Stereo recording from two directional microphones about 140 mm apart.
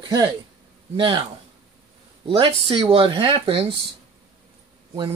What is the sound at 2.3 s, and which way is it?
Speech, 40° right (ahead or behind).